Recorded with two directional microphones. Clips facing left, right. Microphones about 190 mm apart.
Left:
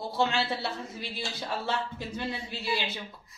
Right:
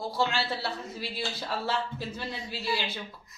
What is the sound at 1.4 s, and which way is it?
Speech, 15° left (ahead or behind).